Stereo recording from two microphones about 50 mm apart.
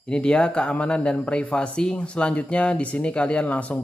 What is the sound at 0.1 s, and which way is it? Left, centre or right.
Speech, left.